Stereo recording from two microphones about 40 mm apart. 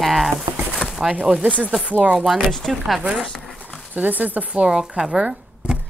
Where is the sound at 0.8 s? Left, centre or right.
Left.